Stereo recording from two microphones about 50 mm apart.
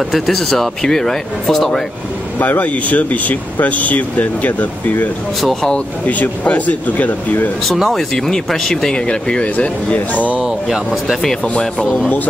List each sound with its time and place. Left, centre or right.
0.1 s speech: centre
2.3 s speech: left
5.4 s speech: centre
6.0 s speech: left
7.9 s speech: centre; by 9.9 s left
10.1 s speech: right
10.4 s speech: centre
11.4 s speech: left